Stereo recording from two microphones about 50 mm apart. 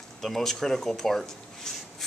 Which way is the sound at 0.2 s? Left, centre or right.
Centre.